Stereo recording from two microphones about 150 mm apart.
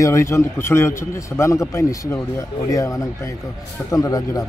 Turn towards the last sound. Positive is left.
turn(degrees=20)  # may be behind; listen again after turning